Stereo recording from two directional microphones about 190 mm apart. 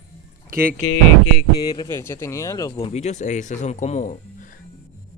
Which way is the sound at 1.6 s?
25° left (ahead or behind).